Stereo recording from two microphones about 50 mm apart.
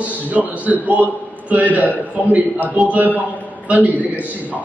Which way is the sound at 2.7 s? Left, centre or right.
Right.